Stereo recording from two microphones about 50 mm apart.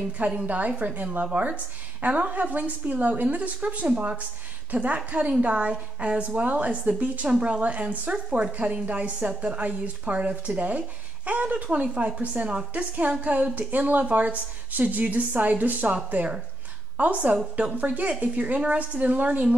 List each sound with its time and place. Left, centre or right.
0.2 s a woman's voice: right